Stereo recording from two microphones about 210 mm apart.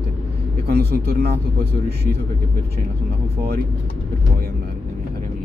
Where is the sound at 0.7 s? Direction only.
50° right (ahead or behind).